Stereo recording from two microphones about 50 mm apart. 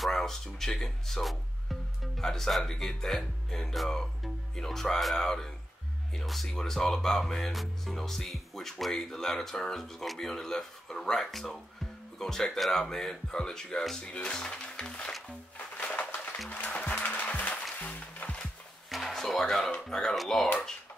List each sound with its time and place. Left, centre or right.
0.0 s speech: centre
15.2 s music: left
18.9 s music: centre
19.9 s speech: centre